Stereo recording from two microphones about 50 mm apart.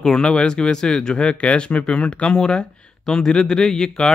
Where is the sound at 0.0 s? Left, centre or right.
Centre.